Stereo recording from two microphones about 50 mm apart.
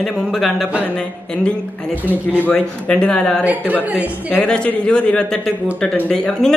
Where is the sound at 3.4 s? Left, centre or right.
Right.